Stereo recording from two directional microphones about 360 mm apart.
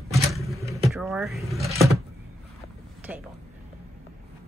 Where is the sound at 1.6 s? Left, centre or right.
Centre.